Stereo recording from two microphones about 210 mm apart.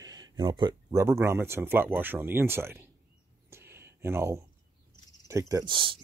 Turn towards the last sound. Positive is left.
turn(degrees=-25)  # may be behind; listen again after turning